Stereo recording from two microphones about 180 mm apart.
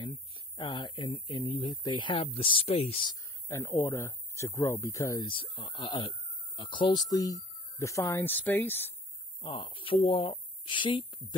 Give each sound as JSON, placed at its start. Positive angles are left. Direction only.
{"t": 0.6, "sound": "speech", "side_deg": 25}
{"t": 3.4, "sound": "speech", "side_deg": 15}
{"t": 9.4, "sound": "speech", "side_deg": 25}